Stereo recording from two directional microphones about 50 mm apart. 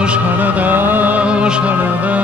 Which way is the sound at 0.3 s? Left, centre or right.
Right.